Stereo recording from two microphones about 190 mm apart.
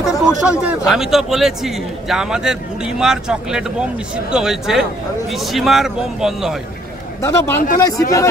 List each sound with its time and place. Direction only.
0.0 s speech: 5° right (ahead or behind)
7.2 s speech: 15° left (ahead or behind)